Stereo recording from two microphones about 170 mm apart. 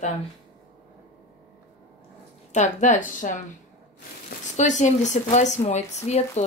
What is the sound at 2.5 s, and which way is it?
Speech, 45° left (ahead or behind).